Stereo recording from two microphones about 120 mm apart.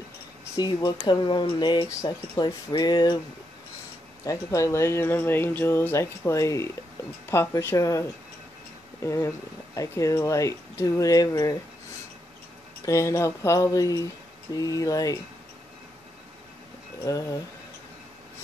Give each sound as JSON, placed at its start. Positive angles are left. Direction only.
{"t": 0.6, "sound": "speech", "side_deg": 35}
{"t": 4.2, "sound": "speech", "side_deg": 25}
{"t": 12.8, "sound": "speech", "side_deg": 25}
{"t": 17.0, "sound": "speech", "side_deg": 25}